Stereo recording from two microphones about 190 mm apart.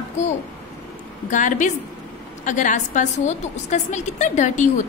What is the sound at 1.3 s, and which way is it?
A woman's voice, 40° left (ahead or behind).